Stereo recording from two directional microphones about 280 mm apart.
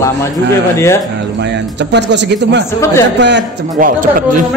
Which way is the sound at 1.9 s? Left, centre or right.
Right.